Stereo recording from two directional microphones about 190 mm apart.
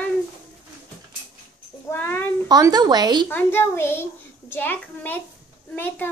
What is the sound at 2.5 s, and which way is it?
Speech, 20° right (ahead or behind).